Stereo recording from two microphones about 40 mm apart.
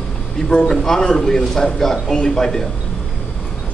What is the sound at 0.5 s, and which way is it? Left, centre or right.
Speech, left.